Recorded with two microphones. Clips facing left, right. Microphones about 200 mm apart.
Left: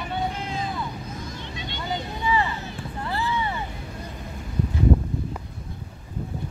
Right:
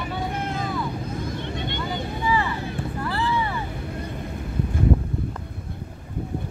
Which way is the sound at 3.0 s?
25° left (ahead or behind).